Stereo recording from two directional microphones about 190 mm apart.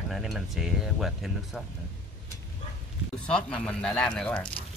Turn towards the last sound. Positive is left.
turn(degrees=5)  # may be behind; listen again after turning